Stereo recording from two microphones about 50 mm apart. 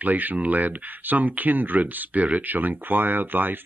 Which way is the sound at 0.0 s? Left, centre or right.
Right.